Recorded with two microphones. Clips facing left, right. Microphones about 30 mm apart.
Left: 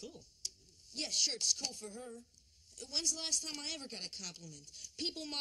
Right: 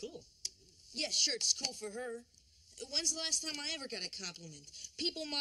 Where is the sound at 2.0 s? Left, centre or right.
Right.